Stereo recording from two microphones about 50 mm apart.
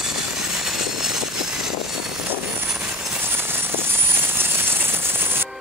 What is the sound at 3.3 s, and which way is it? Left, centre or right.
Tambourine, right.